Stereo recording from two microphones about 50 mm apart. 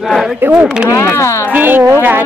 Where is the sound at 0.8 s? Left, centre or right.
Left.